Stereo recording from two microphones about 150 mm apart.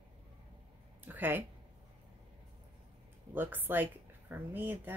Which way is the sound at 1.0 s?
15° right (ahead or behind).